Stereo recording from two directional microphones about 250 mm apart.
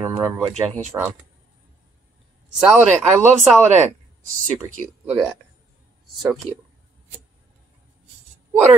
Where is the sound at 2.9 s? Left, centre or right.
Right.